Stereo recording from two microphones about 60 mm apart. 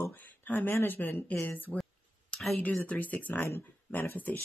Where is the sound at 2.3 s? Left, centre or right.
Centre.